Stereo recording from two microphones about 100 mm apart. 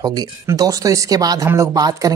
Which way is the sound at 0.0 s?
40° right (ahead or behind).